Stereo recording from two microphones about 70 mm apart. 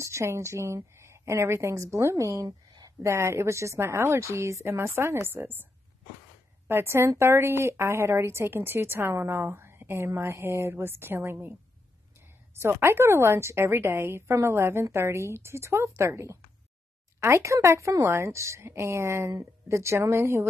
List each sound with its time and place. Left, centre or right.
0.0 s a woman's voice: right
6.7 s a woman's voice: right
12.5 s a woman's voice: right